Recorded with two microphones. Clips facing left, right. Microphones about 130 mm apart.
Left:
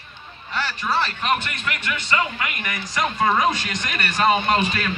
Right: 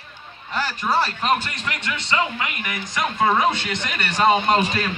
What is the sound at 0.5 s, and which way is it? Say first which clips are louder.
A man's voice: right 2 dB; 40° right (ahead or behind).